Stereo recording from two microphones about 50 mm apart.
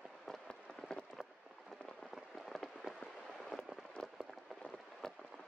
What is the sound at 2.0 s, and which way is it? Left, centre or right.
Rain, centre.